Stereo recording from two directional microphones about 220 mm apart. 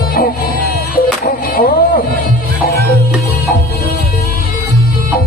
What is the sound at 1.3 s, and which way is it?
Music, 45° left (ahead or behind).